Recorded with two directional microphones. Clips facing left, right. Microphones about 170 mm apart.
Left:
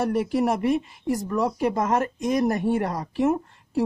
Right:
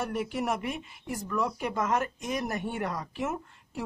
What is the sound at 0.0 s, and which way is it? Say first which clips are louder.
Speech: left 8 dB; 40° left (ahead or behind).